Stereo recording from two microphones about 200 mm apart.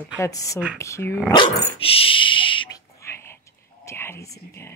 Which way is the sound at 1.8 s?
25° left (ahead or behind).